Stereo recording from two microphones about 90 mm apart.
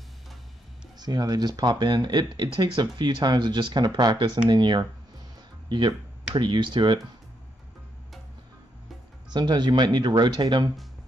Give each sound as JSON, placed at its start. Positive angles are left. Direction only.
{"t": 0.9, "sound": "speech", "side_deg": -50}
{"t": 9.3, "sound": "speech", "side_deg": -55}